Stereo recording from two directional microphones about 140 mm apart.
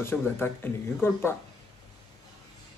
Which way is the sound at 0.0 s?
15° left (ahead or behind).